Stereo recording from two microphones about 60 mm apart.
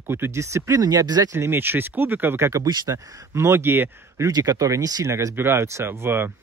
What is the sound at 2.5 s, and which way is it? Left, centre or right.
Speech, right.